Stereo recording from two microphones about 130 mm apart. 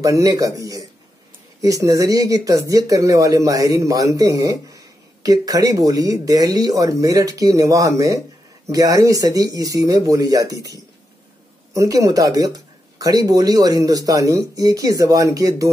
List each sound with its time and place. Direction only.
0.0 s speech: 25° right (ahead or behind)
11.7 s speech: 25° right (ahead or behind)